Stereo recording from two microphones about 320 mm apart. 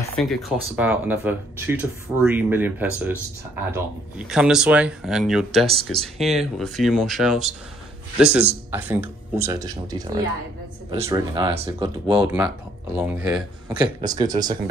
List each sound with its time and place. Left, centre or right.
0.1 s speech: centre
5.7 s speech: centre
6.1 s speech: centre
12.1 s speech: centre